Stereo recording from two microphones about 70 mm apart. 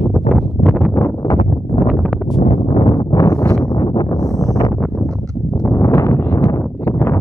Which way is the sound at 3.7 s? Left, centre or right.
Left.